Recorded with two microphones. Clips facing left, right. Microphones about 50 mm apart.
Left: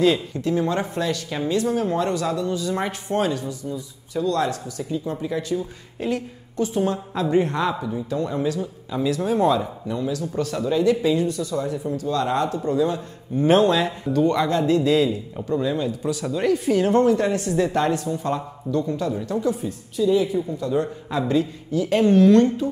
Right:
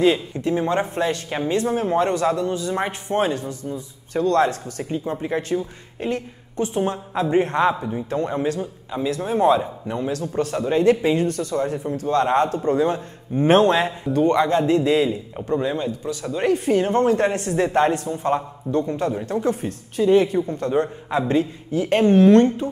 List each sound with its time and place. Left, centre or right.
0.0 s a woman's voice: right
5.9 s a woman's voice: right
8.9 s a woman's voice: centre; by 13.9 s right
14.3 s a woman's voice: right
16.4 s speech: right